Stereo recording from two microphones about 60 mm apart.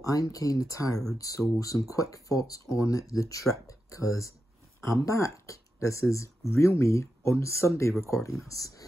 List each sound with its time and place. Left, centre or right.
0.0 s speech: left